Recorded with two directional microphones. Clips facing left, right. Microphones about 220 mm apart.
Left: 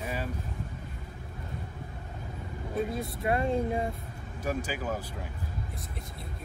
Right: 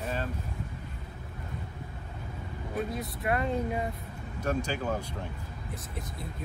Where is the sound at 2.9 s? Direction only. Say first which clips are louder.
Left 1 dB; 25° left (ahead or behind).